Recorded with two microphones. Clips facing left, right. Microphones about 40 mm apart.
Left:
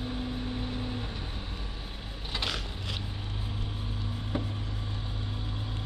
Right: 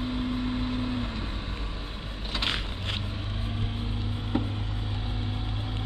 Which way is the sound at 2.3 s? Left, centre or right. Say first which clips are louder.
Right 3 dB; right.